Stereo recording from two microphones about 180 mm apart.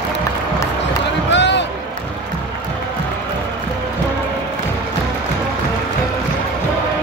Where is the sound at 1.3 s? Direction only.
80° left.